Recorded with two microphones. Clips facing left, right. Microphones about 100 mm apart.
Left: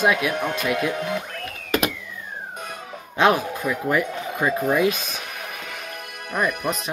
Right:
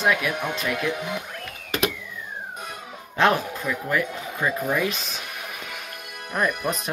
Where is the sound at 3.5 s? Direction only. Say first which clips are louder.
Left 3 dB; 15° left (ahead or behind).